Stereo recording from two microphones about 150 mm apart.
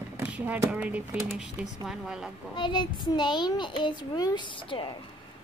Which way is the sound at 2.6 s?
30° left (ahead or behind).